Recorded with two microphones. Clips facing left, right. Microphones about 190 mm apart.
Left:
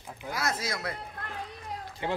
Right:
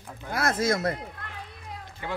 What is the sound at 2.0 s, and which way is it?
Speech, 25° left (ahead or behind).